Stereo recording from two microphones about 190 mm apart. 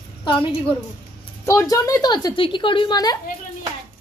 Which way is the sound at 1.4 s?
15° left (ahead or behind).